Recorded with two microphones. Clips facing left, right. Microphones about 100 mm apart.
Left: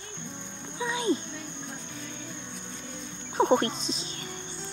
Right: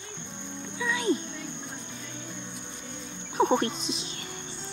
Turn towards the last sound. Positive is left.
turn(degrees=35)  # may be behind; listen again after turning